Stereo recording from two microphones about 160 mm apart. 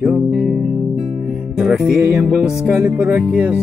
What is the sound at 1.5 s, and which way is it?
Music, 5° right (ahead or behind).